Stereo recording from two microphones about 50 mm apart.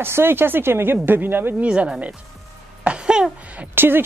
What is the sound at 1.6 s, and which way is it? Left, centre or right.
Speech, right.